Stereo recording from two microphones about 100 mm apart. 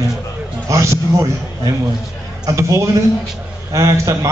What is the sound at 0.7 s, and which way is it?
Speech, 30° right (ahead or behind).